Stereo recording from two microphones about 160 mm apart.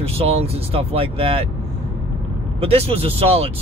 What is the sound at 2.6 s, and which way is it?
Speech, 40° right (ahead or behind).